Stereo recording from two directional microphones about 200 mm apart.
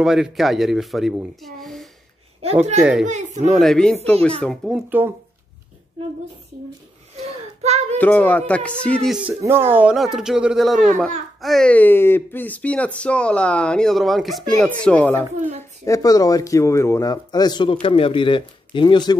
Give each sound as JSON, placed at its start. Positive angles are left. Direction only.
{"t": 0.0, "sound": "a child's voice", "side_deg": 0}
{"t": 3.1, "sound": "speech", "side_deg": -35}
{"t": 3.4, "sound": "a child's voice", "side_deg": 0}
{"t": 7.2, "sound": "a sound", "side_deg": -30}
{"t": 8.0, "sound": "a child's voice", "side_deg": 10}